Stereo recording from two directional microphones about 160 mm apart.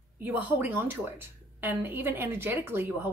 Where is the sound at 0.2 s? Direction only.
10° right (ahead or behind).